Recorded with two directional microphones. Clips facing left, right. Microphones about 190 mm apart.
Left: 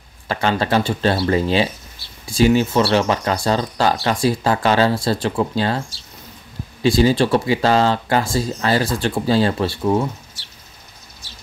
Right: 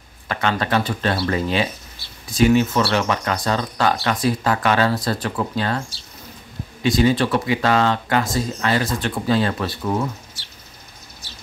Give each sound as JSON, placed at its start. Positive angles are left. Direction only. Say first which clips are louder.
{"t": 0.3, "sound": "speech", "louder": "left 2 dB", "side_deg": 30}
{"t": 6.8, "sound": "speech", "louder": "left 2 dB", "side_deg": 30}